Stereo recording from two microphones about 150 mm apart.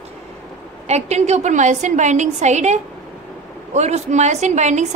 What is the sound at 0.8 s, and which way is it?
A woman's voice, 50° right (ahead or behind).